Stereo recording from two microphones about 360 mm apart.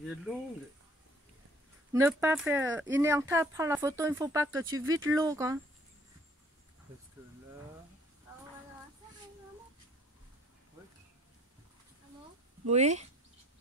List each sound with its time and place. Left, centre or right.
1.9 s speech: centre
12.6 s speech: centre